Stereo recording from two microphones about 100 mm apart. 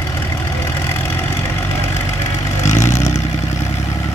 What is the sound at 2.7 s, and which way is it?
Vehicle, 30° left (ahead or behind).